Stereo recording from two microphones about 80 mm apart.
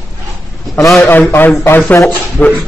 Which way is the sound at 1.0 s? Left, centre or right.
Left.